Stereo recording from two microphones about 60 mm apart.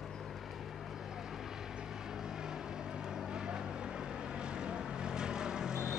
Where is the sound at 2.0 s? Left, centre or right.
Centre.